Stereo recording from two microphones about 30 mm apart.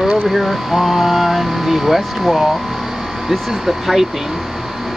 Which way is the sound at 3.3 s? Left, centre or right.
Centre.